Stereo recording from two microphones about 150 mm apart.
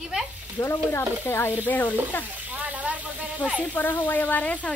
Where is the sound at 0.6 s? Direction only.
15° left (ahead or behind).